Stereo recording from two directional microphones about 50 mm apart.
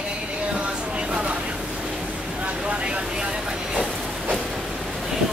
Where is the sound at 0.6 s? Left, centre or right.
Right.